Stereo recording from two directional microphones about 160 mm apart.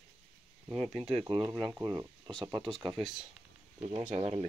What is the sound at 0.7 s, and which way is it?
Speech, 40° right (ahead or behind).